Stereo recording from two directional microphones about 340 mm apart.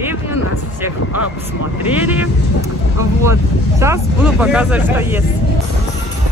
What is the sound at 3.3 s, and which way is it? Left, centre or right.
Speech, centre.